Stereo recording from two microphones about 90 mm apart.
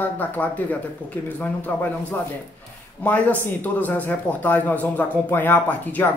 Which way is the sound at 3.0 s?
15° left (ahead or behind).